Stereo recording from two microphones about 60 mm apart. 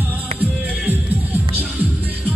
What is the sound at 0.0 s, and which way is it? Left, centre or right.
Music, right.